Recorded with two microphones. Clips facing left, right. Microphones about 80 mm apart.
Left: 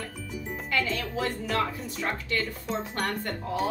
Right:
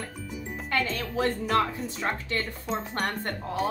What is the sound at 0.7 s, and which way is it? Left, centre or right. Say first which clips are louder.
Speech: right 1 dB; right.